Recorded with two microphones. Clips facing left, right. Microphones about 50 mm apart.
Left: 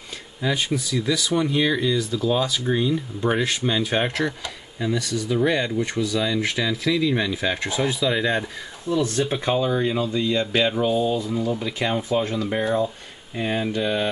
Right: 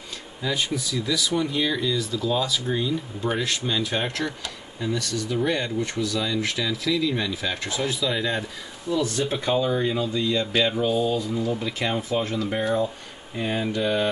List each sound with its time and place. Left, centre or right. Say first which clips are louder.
0.4 s speech: left 3 dB; centre